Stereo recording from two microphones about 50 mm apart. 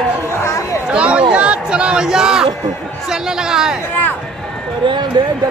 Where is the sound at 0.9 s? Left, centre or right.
Right.